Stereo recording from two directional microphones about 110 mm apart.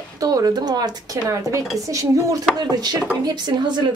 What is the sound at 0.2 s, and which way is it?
Speech, 35° right (ahead or behind).